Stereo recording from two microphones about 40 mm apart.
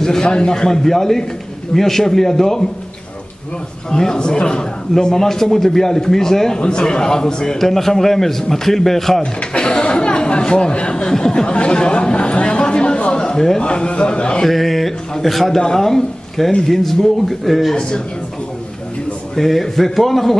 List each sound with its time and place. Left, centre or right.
0.0 s a man's voice: centre
3.9 s a man's voice: centre
7.5 s a man's voice: centre
9.2 s a man's voice: left
14.4 s a man's voice: centre
17.7 s a man's voice: left
19.3 s speech: centre